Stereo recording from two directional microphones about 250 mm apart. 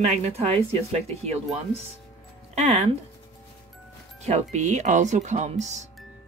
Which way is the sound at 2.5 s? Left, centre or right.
Right.